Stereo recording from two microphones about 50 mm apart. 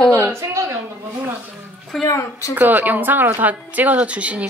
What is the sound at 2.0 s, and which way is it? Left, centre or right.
Speech, left.